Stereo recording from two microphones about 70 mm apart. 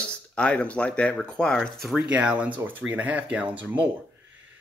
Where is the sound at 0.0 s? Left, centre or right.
Centre.